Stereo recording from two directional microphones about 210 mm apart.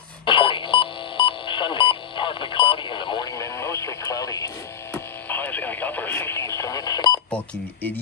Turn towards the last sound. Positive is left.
turn(degrees=10)  # may be behind; listen again after turning